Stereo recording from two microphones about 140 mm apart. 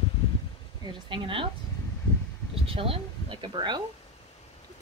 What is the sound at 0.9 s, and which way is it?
Speech, 35° right (ahead or behind).